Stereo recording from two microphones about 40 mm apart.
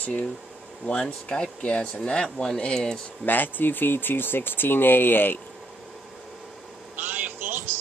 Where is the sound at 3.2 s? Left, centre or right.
Left.